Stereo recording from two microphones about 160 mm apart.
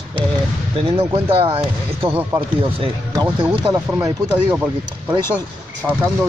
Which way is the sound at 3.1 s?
25° right (ahead or behind).